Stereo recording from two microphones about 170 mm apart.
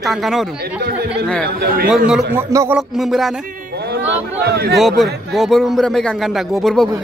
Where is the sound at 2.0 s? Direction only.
5° right (ahead or behind).